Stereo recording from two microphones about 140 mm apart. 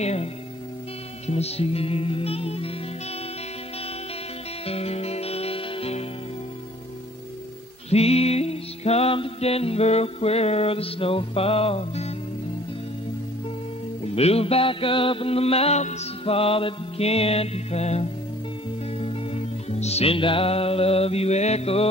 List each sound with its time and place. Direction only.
0.0 s speech: 50° left (ahead or behind)
1.2 s music: 50° left (ahead or behind)
4.6 s music: 45° left (ahead or behind)
7.9 s music: 45° left (ahead or behind)
14.0 s music: 45° left (ahead or behind)